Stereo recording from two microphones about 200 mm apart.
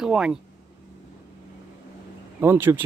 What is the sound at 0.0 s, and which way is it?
Speech, 5° right (ahead or behind).